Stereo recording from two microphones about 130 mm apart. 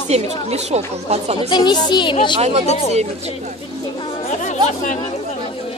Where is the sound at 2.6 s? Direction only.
60° left (ahead or behind).